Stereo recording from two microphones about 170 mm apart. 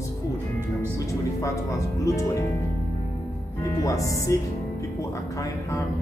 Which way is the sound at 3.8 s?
20° left (ahead or behind).